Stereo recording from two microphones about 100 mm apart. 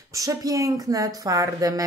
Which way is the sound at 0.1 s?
35° right (ahead or behind).